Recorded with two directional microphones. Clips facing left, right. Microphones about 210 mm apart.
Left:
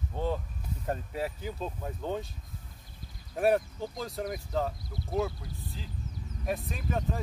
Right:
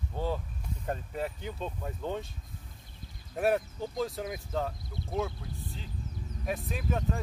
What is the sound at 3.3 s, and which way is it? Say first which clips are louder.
Speech: left 2 dB; centre (ahead or behind).